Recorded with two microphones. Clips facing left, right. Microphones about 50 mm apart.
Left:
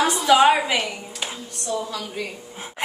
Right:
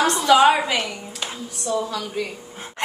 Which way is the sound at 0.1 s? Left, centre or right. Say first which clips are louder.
Right 1 dB; centre.